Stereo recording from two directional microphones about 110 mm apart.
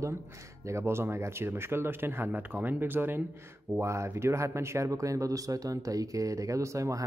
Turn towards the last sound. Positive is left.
turn(degrees=-30)  # may be behind; listen again after turning